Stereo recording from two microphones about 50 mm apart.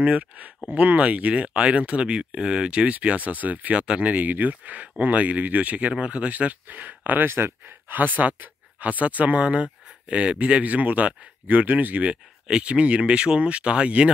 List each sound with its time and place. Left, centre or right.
0.0 s speech: right
3.7 s speech: right
4.1 s speech: right
7.2 s speech: right
7.9 s speech: right
12.4 s speech: right